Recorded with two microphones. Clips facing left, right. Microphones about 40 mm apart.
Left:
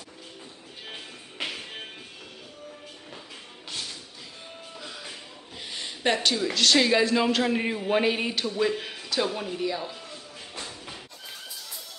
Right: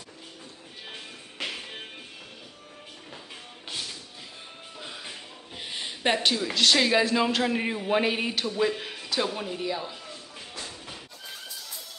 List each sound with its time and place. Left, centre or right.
4.7 s music: centre
5.6 s a sound: centre
6.3 s a man's voice: centre